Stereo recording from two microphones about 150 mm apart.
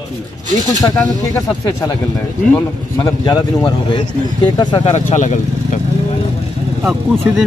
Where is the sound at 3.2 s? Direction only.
25° left (ahead or behind); by 5.8 s 50° left (ahead or behind).